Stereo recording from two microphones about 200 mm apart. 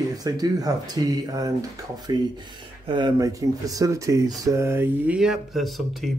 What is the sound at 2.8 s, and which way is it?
Speech, 20° right (ahead or behind).